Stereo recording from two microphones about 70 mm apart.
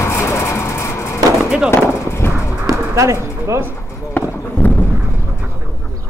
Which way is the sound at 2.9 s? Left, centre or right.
Right.